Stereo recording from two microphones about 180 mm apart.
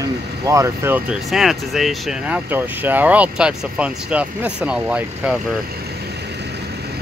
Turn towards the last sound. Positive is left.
turn(degrees=-5)  # may be behind; listen again after turning